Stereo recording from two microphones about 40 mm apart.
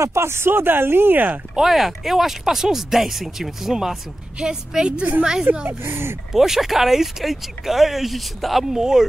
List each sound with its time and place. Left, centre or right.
0.2 s speech: right
1.5 s speech: centre
4.4 s a woman's voice: right
5.7 s speech: right
6.3 s speech: centre
8.7 s speech: centre